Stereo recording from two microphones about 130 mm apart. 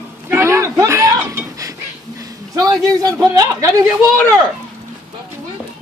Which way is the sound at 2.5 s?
30° right (ahead or behind).